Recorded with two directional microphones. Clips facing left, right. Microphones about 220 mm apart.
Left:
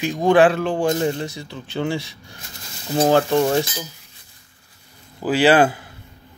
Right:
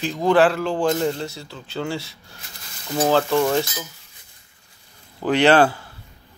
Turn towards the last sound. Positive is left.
turn(degrees=15)  # may be behind; listen again after turning